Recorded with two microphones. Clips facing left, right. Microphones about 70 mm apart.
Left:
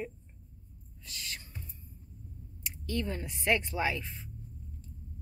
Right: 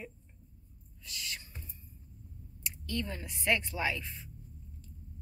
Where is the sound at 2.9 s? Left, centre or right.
Left.